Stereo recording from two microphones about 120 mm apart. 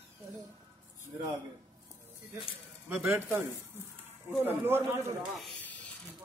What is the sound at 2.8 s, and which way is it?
Speech, 20° right (ahead or behind).